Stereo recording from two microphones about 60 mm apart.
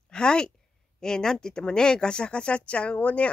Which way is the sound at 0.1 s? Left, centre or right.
Centre.